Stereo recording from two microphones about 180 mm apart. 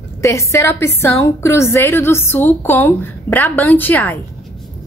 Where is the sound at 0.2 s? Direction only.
15° left (ahead or behind).